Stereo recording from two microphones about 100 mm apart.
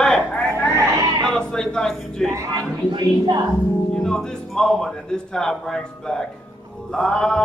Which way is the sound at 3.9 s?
5° left (ahead or behind).